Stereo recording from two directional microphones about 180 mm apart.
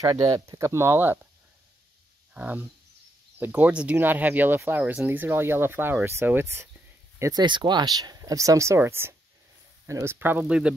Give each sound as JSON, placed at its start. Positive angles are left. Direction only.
{"t": 0.0, "sound": "speech", "side_deg": -20}
{"t": 2.3, "sound": "speech", "side_deg": -10}